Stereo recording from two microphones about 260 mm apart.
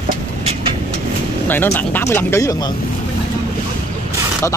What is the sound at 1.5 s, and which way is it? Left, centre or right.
Speech, centre.